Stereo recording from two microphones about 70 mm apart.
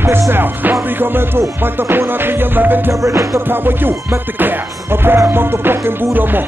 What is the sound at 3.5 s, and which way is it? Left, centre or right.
Music, right.